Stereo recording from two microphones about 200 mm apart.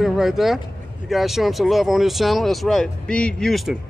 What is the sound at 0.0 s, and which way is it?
Speech, centre (ahead or behind).